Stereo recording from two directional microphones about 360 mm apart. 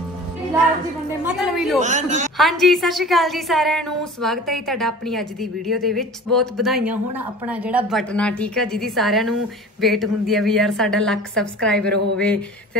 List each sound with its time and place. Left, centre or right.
1.2 s chatter: centre
1.8 s speech: centre
2.3 s a woman's voice: centre